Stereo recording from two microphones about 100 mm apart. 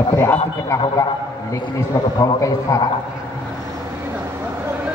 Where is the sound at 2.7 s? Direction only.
35° left (ahead or behind).